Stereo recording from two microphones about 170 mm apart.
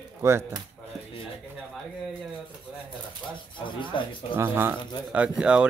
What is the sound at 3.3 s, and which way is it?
Speech, 30° left (ahead or behind).